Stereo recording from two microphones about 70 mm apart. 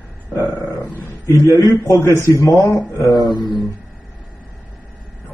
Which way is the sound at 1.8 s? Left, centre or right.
Left.